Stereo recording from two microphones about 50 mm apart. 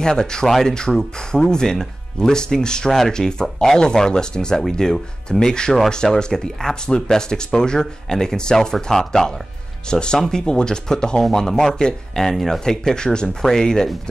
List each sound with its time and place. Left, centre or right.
0.0 s speech: centre